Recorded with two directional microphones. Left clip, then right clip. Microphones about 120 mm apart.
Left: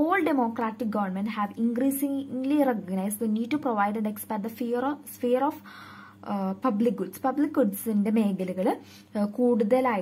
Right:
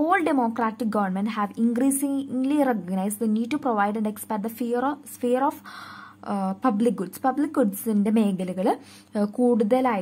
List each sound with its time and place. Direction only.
0.0 s a woman's voice: 20° right (ahead or behind)